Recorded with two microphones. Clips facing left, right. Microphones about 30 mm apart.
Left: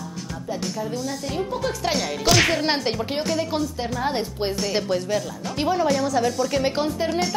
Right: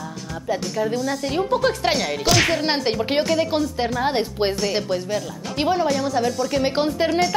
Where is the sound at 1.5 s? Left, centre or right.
Right.